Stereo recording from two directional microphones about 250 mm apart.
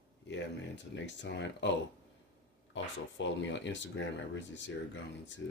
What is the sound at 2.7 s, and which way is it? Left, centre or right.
Speech, left.